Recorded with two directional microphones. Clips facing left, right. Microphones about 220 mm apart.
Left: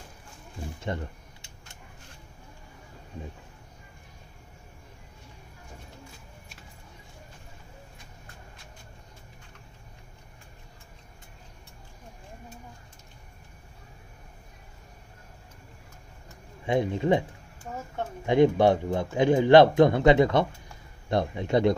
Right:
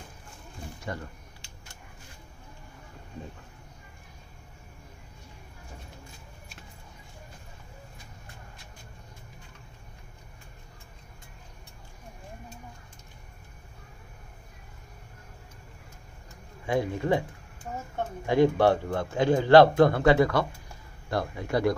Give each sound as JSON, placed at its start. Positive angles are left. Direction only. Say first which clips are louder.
{"t": 0.7, "sound": "camera", "louder": "left 4 dB", "side_deg": 25}
{"t": 16.6, "sound": "speech", "louder": "left 2 dB", "side_deg": 20}
{"t": 18.2, "sound": "speech", "louder": "left 2 dB", "side_deg": 20}